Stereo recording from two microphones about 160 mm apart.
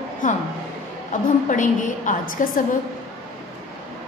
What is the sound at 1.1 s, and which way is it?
A woman's voice, 55° left (ahead or behind).